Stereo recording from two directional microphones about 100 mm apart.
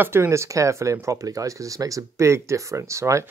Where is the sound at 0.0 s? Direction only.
25° right (ahead or behind).